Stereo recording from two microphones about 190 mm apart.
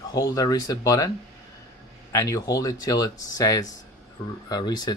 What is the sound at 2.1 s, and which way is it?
Speech, 15° left (ahead or behind).